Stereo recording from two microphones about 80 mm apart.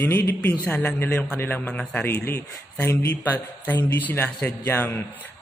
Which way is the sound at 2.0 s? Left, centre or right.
Left.